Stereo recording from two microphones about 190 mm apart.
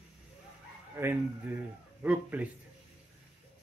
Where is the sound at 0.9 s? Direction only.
10° right (ahead or behind).